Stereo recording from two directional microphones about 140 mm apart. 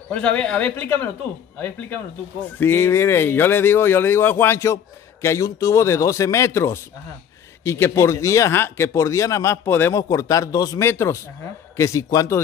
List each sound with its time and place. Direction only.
0.1 s speech: 10° left (ahead or behind)
2.6 s speech: 15° left (ahead or behind)